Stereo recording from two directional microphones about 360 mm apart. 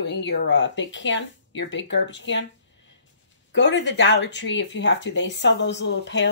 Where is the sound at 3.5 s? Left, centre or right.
Left.